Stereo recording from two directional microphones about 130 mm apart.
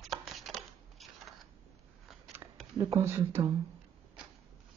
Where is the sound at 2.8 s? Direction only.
20° right (ahead or behind).